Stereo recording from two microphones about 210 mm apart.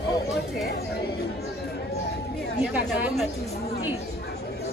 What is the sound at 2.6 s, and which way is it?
Speech, 5° right (ahead or behind).